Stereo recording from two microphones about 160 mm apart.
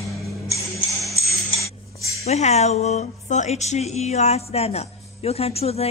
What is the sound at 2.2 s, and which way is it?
Speech, 45° left (ahead or behind).